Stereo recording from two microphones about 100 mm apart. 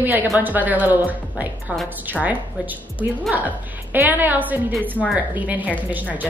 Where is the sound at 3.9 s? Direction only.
20° right (ahead or behind).